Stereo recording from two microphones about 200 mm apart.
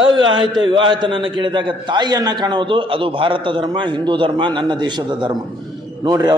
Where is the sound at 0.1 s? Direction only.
25° right (ahead or behind).